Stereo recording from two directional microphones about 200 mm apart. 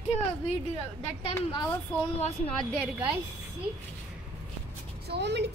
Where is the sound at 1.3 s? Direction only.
20° left (ahead or behind).